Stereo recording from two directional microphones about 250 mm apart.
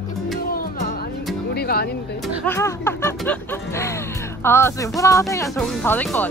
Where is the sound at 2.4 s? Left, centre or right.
Centre.